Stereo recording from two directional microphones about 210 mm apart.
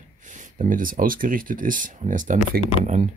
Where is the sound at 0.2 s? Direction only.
35° right (ahead or behind).